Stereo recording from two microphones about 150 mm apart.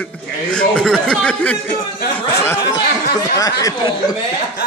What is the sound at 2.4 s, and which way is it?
Speech, 20° left (ahead or behind).